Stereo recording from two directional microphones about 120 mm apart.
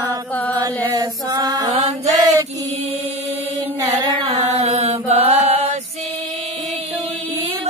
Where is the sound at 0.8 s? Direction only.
35° right (ahead or behind).